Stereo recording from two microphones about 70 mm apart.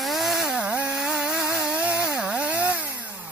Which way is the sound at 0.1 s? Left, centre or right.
Centre.